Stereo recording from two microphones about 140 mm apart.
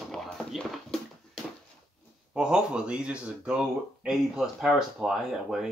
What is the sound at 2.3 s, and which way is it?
Speech, 5° right (ahead or behind).